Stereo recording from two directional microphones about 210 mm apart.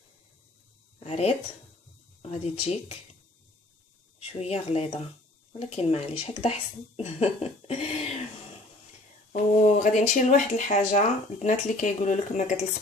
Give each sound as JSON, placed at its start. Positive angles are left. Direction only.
{"t": 0.9, "sound": "a sound", "side_deg": 30}
{"t": 2.4, "sound": "speech", "side_deg": 30}
{"t": 4.3, "sound": "speech", "side_deg": 30}
{"t": 9.8, "sound": "speech", "side_deg": 35}